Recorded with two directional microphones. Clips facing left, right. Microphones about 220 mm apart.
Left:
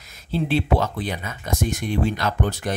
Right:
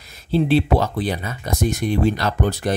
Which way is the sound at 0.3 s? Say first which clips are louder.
Right 4 dB; 35° right (ahead or behind).